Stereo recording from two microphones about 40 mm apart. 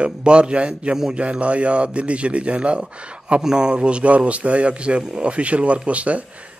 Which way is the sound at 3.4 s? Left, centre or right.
Centre.